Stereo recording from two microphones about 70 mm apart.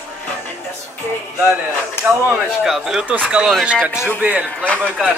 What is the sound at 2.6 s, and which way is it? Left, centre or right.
Speech, centre.